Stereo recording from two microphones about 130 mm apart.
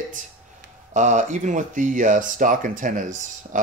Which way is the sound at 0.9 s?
70° right (ahead or behind).